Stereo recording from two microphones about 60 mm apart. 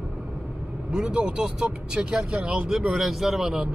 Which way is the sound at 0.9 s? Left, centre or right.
Centre.